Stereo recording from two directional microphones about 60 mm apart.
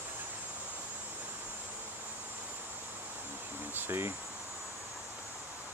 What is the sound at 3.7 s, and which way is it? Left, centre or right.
Insect, right.